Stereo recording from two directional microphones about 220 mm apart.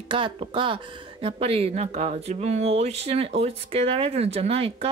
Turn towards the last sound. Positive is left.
turn(degrees=-25)  # may be behind; listen again after turning